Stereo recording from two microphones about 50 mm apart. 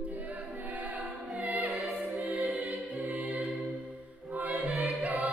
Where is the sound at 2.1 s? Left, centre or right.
Right.